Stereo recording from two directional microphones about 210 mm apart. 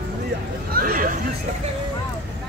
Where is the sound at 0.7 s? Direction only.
45° right (ahead or behind).